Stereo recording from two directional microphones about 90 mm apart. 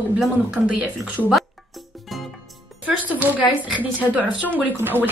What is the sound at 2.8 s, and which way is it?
Music, 15° right (ahead or behind).